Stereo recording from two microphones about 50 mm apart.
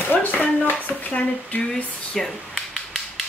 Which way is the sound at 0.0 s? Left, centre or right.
Left.